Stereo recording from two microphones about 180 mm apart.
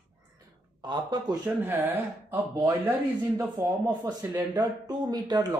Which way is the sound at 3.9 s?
20° right (ahead or behind).